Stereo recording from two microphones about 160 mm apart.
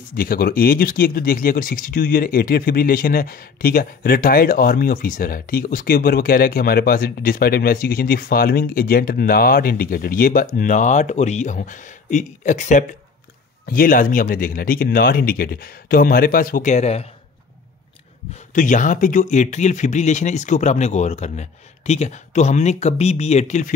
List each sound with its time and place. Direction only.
0.1 s speech: 65° left (ahead or behind); by 12.8 s 50° left (ahead or behind)
13.7 s speech: 65° left (ahead or behind); by 17.1 s 40° left (ahead or behind)
18.5 s speech: 55° left (ahead or behind)